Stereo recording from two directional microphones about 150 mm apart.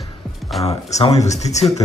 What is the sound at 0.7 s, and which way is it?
Speech, 45° left (ahead or behind).